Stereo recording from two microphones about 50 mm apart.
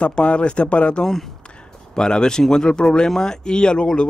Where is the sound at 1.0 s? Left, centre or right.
Centre.